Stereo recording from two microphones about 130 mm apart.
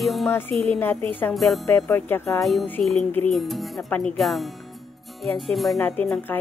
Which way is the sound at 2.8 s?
10° left (ahead or behind).